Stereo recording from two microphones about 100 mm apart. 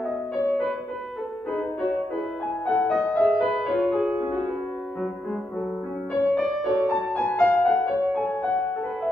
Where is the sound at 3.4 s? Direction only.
Centre (ahead or behind).